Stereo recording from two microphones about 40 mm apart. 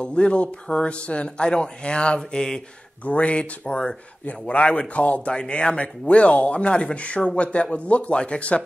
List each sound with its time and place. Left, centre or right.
0.0 s speech: left
3.1 s speech: left
5.3 s speech: left